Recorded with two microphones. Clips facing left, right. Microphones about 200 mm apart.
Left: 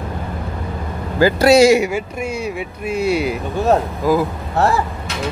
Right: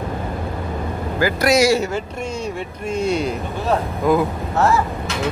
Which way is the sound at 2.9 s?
10° left (ahead or behind).